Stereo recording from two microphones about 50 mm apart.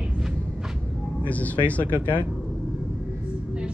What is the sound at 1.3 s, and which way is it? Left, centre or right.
Speech, left.